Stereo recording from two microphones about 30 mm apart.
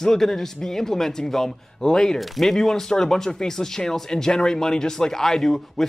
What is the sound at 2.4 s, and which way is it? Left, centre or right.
A man's voice, centre.